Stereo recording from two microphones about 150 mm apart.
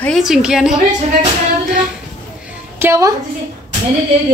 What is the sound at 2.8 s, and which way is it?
Speech, 20° right (ahead or behind).